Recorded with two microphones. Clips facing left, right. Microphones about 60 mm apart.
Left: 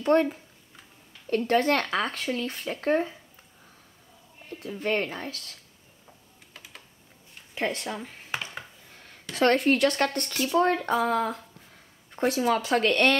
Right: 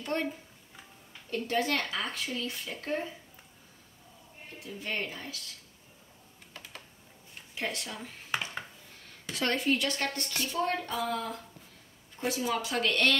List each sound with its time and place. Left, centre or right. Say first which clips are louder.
0.0 s speech: left 11 dB; left
4.6 s speech: left 8 dB; left
6.5 s typing: right 1 dB; centre
7.5 s speech: left 6 dB; left
9.3 s speech: left 7 dB; left
12.2 s speech: left 7 dB; left